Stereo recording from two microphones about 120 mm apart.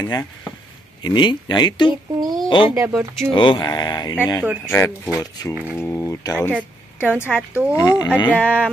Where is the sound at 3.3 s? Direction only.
45° left (ahead or behind).